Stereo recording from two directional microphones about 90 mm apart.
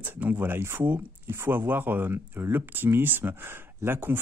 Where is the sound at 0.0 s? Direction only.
20° right (ahead or behind).